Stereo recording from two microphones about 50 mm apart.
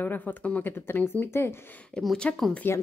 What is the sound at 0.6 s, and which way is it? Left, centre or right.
Speech, left.